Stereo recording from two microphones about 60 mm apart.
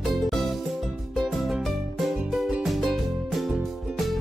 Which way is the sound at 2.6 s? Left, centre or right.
Centre.